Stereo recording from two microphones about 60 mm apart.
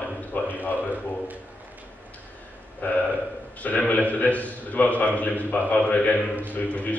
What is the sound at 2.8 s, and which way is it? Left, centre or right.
A man's voice, left.